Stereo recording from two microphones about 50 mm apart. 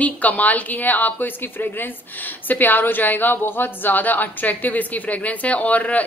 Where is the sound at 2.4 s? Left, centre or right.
Left.